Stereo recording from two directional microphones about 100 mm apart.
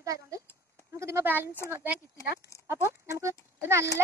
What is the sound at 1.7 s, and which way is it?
Speech, 15° right (ahead or behind).